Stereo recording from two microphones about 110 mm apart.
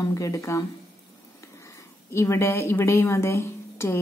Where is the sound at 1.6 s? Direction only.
25° left (ahead or behind).